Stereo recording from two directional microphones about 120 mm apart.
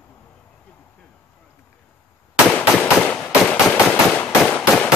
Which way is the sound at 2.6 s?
10° left (ahead or behind).